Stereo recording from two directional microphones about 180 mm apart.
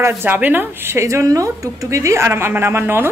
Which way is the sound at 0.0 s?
10° right (ahead or behind).